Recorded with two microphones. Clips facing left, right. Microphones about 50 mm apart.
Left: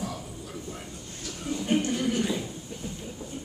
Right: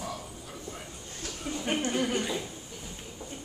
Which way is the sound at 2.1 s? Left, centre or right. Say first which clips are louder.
Left 3 dB; centre.